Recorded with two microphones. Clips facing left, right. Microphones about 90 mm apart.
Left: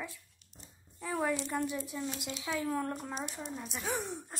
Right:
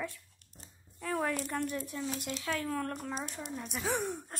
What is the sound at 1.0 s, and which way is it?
Speech, 10° left (ahead or behind).